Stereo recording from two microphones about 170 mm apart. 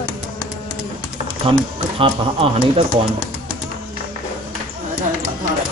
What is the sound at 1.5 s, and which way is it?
Speech, 30° right (ahead or behind).